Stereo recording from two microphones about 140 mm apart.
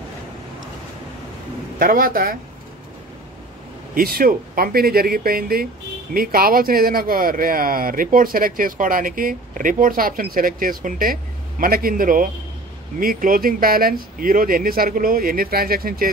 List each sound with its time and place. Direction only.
1.8 s speech: 90° right
3.9 s speech: 90° right
11.6 s a man's voice: 90° right